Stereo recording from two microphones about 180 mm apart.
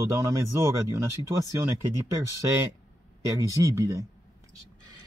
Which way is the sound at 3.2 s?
15° right (ahead or behind).